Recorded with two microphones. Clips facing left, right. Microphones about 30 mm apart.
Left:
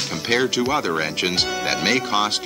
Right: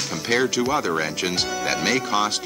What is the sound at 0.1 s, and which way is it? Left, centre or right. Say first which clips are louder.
Speech: left 1 dB; centre.